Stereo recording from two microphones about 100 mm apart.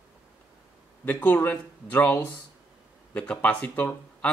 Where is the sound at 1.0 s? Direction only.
20° left (ahead or behind).